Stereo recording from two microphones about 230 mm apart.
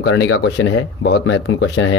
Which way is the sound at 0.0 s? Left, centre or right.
Left.